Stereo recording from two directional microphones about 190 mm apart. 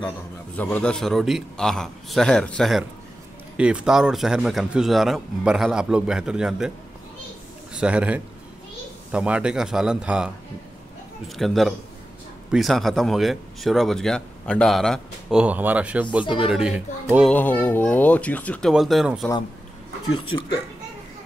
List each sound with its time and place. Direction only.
0.6 s speech: 10° left (ahead or behind)
7.7 s a man's voice: 5° right (ahead or behind)
11.3 s speech: centre (ahead or behind)
17.3 s speech: 10° left (ahead or behind)
20.1 s speech: 25° left (ahead or behind)